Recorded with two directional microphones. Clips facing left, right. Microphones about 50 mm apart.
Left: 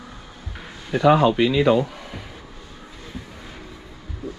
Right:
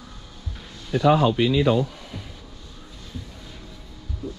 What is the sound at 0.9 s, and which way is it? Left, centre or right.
A man's voice, left.